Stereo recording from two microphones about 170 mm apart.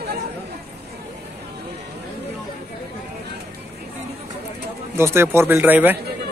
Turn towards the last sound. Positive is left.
turn(degrees=-10)  # may be behind; listen again after turning